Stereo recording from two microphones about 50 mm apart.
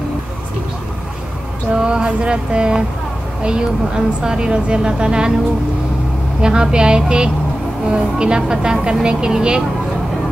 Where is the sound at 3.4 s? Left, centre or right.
Centre.